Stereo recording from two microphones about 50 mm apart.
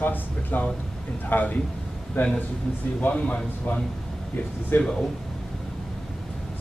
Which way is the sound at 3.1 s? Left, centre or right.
Left.